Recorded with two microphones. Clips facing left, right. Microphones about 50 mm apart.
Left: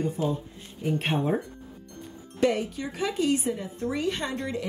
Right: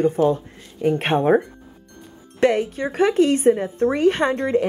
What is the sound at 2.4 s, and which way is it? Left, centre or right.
A woman's voice, right.